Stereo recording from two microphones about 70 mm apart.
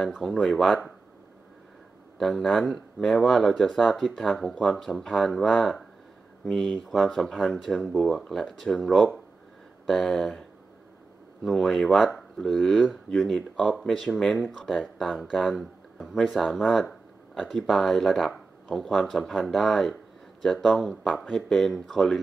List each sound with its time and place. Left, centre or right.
0.0 s speech: centre
2.1 s speech: centre
11.4 s speech: centre